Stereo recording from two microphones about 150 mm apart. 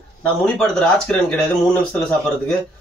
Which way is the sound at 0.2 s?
5° left (ahead or behind).